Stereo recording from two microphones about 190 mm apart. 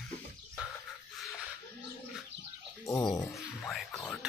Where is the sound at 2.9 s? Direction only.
20° left (ahead or behind).